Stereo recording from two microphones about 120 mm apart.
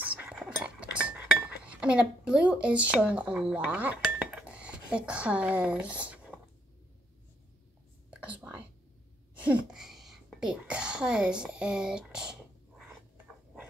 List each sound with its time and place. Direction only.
0.0 s cutlery: 10° right (ahead or behind)
0.7 s dishes: 10° right (ahead or behind)
8.1 s whispering: 10° right (ahead or behind)
9.4 s a sound: 10° right (ahead or behind)